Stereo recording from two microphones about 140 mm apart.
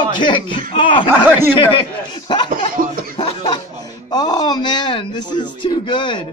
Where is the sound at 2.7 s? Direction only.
75° right (ahead or behind).